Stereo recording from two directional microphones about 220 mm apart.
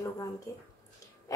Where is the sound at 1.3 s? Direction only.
15° left (ahead or behind).